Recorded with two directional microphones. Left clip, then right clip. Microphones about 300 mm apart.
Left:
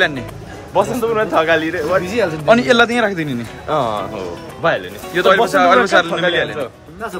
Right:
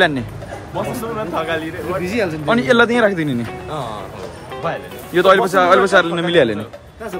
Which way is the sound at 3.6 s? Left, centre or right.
Left.